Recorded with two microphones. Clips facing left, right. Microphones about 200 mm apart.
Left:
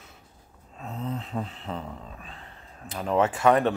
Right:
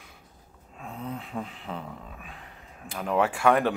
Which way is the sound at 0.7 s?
10° right (ahead or behind).